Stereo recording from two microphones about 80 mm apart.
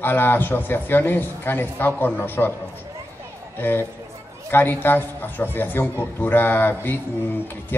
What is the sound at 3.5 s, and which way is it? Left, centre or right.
A man's voice, left.